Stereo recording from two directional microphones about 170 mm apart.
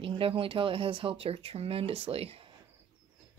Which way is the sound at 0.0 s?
30° right (ahead or behind).